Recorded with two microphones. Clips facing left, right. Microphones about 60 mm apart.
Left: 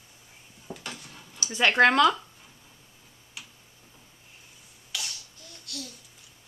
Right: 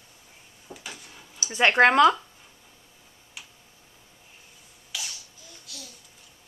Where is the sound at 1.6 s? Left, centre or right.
Right.